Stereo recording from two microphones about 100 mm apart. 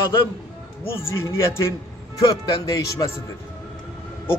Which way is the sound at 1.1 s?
30° left (ahead or behind).